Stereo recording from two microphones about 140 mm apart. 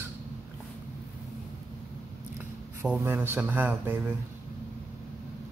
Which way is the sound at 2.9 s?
15° right (ahead or behind).